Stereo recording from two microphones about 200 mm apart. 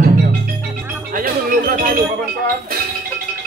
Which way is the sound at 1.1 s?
45° right (ahead or behind).